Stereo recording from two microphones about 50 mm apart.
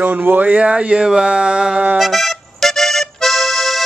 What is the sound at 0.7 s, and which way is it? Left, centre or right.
Speech, centre.